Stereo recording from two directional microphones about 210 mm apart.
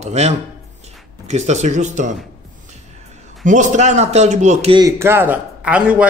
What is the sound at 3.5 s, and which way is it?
A man's voice, 35° right (ahead or behind).